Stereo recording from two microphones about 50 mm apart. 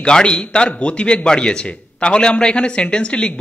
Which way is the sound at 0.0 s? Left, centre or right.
Centre.